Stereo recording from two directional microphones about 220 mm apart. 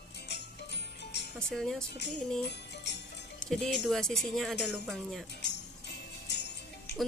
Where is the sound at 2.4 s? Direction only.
50° left (ahead or behind).